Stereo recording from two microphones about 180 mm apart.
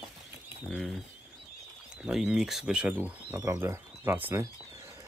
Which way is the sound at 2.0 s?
5° right (ahead or behind).